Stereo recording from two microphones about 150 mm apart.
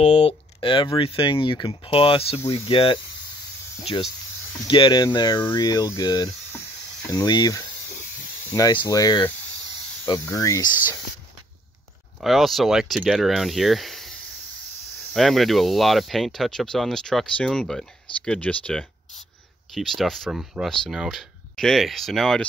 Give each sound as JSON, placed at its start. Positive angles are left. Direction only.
{"t": 0.0, "sound": "speech", "side_deg": 45}
{"t": 12.2, "sound": "speech", "side_deg": 0}
{"t": 15.1, "sound": "speech", "side_deg": 0}